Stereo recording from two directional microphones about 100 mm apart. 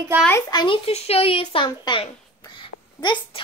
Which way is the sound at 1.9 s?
45° left (ahead or behind).